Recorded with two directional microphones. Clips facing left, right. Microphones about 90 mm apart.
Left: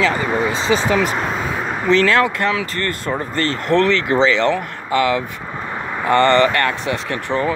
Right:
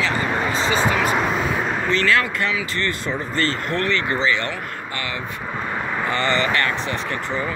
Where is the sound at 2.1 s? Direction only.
55° left (ahead or behind).